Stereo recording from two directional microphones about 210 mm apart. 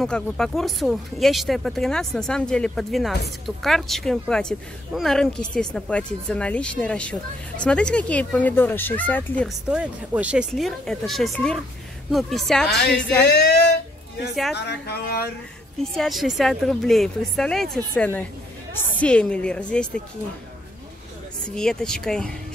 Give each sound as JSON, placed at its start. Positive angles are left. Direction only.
{"t": 0.0, "sound": "speech", "side_deg": 0}
{"t": 14.5, "sound": "speech", "side_deg": 50}
{"t": 15.8, "sound": "speech", "side_deg": 0}
{"t": 21.5, "sound": "speech", "side_deg": 5}